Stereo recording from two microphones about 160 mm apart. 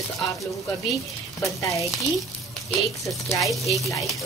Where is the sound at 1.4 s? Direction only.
20° left (ahead or behind).